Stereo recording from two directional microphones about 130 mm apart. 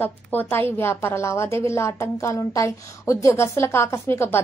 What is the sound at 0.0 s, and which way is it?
A woman's voice, 15° left (ahead or behind).